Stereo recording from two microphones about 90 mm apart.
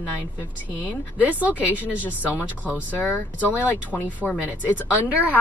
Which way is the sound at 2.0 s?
20° left (ahead or behind).